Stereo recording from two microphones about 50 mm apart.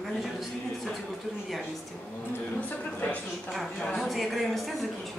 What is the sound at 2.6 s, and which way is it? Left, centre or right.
Speech, left.